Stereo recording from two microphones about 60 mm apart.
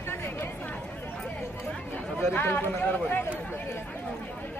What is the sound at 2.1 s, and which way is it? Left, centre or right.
Speech, left.